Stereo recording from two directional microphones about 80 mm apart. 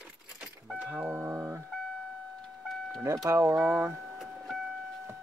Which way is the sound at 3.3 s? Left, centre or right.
Right.